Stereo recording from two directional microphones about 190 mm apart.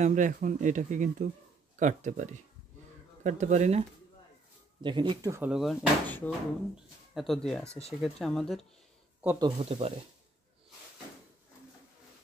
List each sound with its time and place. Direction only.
0.0 s speech: 40° right (ahead or behind)
3.3 s speech: 40° right (ahead or behind)
4.8 s speech: 25° right (ahead or behind)
5.5 s speech: centre (ahead or behind)
9.2 s speech: 10° right (ahead or behind)
9.7 s speech: 30° right (ahead or behind)